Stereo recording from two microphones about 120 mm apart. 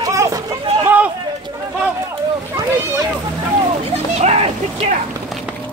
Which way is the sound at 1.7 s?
20° right (ahead or behind).